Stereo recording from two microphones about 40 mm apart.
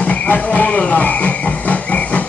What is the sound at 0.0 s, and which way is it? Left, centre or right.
Speech, left.